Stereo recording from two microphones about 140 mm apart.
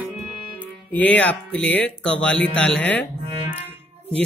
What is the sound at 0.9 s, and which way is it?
Speech, 10° left (ahead or behind).